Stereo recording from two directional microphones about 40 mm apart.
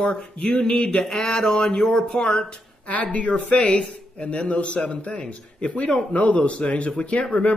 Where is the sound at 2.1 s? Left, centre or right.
Left.